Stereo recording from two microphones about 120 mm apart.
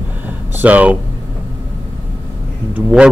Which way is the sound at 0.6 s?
10° right (ahead or behind).